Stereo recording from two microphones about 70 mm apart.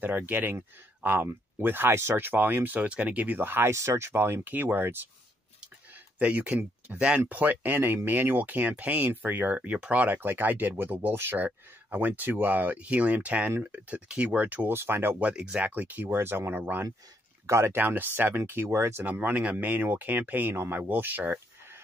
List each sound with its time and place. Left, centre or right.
0.0 s speech: right
3.7 s speech: right
6.1 s speech: right
14.7 s speech: right
17.5 s speech: right
19.0 s speech: right